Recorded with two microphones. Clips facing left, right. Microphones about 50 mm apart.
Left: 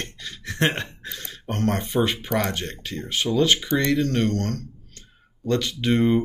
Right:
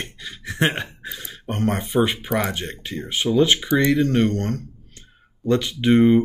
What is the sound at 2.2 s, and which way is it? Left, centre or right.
Speech, centre.